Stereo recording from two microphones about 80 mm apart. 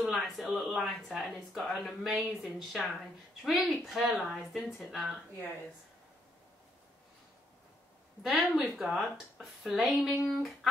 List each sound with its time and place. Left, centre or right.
0.2 s speech: centre
8.2 s speech: centre